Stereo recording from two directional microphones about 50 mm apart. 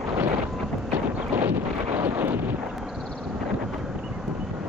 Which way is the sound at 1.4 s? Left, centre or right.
Right.